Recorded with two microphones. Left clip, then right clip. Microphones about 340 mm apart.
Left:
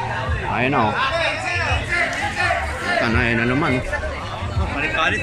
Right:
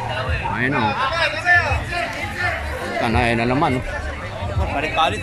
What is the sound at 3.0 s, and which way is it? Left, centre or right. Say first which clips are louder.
Speech: right 1 dB; centre.